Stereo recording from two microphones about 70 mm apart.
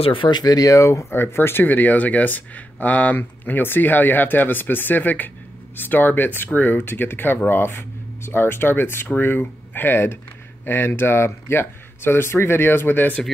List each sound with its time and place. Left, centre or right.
0.3 s speech: left
1.1 s speech: left